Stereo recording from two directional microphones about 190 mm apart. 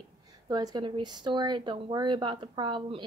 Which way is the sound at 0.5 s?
20° right (ahead or behind).